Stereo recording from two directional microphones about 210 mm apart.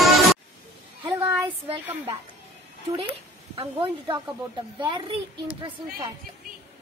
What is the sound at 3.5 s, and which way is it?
Speech, 25° right (ahead or behind).